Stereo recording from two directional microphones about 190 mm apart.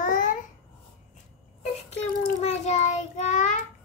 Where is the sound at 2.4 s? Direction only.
35° left (ahead or behind).